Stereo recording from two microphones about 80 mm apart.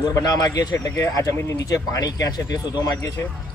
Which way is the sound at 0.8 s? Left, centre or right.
Left.